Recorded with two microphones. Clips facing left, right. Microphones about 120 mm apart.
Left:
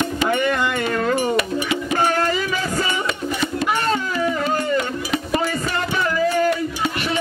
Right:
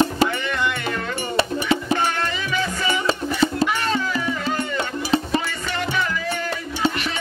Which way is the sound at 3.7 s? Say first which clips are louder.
Left 2 dB; 35° left (ahead or behind).